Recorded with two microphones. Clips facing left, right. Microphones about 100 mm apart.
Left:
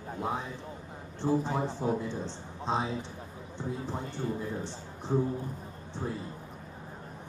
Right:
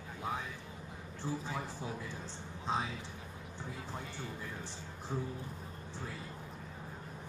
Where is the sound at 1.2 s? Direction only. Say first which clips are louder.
Left 11 dB; 45° left (ahead or behind).